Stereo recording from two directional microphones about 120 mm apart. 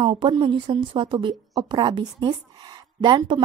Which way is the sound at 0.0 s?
45° right (ahead or behind).